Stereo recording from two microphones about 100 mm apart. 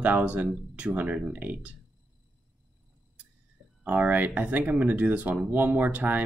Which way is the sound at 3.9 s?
15° right (ahead or behind).